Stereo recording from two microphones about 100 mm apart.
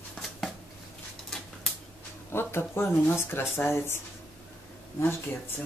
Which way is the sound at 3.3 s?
25° left (ahead or behind).